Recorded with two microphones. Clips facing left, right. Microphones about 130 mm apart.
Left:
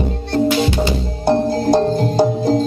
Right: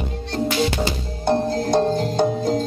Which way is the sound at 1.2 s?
5° left (ahead or behind).